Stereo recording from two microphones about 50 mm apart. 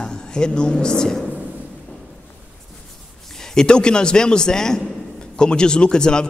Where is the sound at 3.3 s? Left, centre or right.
Centre.